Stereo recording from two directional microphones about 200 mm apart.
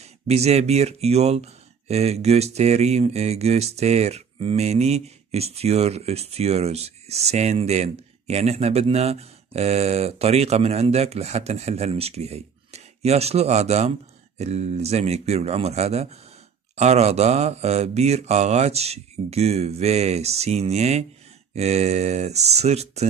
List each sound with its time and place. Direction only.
0.0 s speech: 30° right (ahead or behind)